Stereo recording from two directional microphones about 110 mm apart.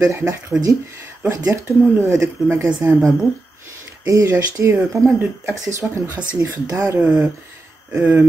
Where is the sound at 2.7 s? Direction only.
10° right (ahead or behind).